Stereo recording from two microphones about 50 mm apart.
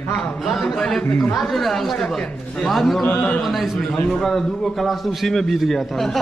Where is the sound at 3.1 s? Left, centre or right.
Left.